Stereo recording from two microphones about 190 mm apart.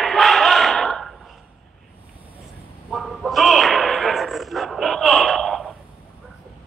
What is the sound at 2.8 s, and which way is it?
Whip, centre (ahead or behind).